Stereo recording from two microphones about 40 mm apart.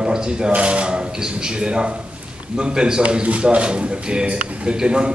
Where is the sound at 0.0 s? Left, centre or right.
Centre.